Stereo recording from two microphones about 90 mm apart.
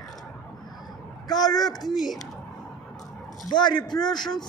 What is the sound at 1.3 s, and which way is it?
Speech, 50° left (ahead or behind).